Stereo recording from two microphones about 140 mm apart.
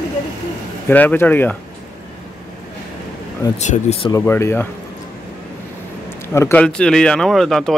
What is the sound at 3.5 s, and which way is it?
Speech, 55° left (ahead or behind).